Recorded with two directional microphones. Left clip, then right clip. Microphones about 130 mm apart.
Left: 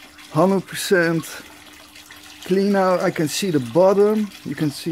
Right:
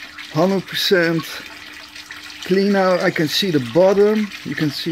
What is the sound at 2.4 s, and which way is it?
Speech, centre (ahead or behind).